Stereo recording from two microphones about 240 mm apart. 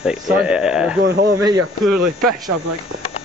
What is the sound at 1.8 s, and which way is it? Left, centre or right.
Speech, centre.